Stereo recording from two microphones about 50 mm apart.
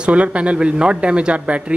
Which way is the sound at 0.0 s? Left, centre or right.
Right.